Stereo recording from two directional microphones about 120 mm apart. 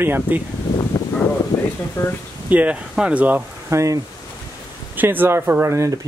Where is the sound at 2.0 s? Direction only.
25° left (ahead or behind).